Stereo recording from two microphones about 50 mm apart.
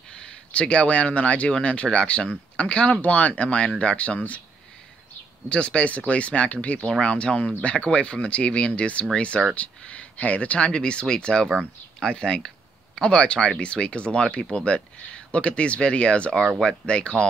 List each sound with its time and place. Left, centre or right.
0.1 s speech: centre
5.5 s speech: left